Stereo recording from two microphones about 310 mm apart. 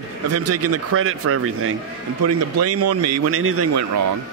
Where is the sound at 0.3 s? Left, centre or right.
Right.